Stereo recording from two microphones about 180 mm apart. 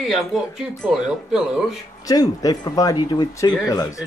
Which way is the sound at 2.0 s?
20° left (ahead or behind).